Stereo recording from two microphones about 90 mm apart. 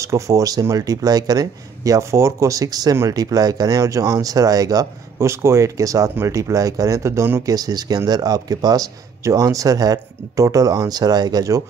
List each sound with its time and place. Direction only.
0.0 s speech: 35° right (ahead or behind)
5.3 s speech: 35° right (ahead or behind)